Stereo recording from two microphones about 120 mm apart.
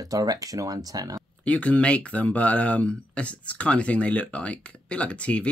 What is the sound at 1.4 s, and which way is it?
Speech, 10° left (ahead or behind).